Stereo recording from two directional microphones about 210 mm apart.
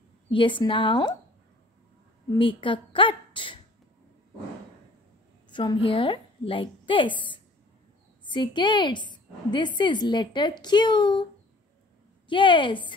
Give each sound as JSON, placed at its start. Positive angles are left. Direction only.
{"t": 0.3, "sound": "a woman's voice", "side_deg": 25}
{"t": 2.3, "sound": "a woman's voice", "side_deg": 25}
{"t": 5.5, "sound": "a woman's voice", "side_deg": 20}
{"t": 12.3, "sound": "a woman's voice", "side_deg": 25}